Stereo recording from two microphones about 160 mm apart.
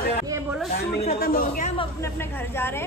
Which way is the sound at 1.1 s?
70° left (ahead or behind).